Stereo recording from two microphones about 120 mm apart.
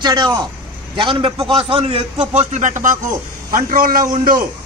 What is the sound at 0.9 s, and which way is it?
A man's voice, 45° right (ahead or behind).